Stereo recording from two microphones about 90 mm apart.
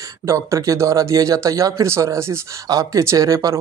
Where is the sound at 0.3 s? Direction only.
35° right (ahead or behind).